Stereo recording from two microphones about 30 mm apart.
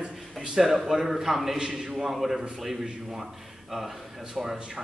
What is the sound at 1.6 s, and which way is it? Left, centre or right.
Speech, right.